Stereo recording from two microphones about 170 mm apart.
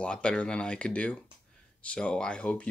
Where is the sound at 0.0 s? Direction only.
5° left (ahead or behind).